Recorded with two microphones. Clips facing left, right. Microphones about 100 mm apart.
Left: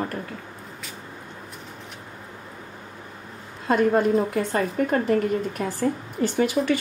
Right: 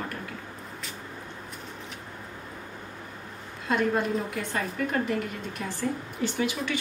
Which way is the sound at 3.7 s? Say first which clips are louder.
Left 6 dB; 45° left (ahead or behind).